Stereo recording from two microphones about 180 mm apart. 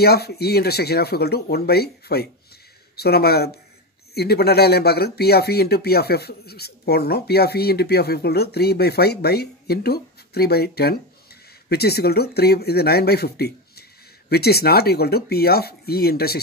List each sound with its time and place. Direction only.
0.0 s speech: 60° left (ahead or behind)